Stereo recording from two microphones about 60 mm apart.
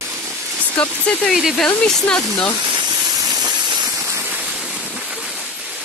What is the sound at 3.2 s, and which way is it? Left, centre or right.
Steam, right.